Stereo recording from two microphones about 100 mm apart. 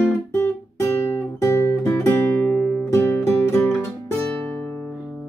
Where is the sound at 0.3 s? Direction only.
25° left (ahead or behind).